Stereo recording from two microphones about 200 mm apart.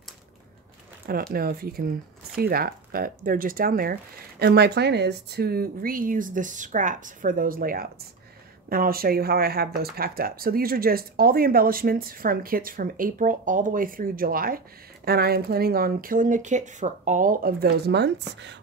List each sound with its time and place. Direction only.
1.3 s speech: 50° right (ahead or behind)